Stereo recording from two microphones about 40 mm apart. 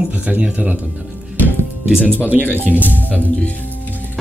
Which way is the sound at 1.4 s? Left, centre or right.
Left.